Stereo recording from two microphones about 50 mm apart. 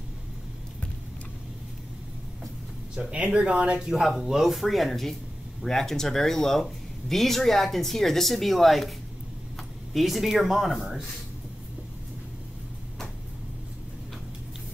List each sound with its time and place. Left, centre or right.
3.0 s speech: centre
3.8 s speech: centre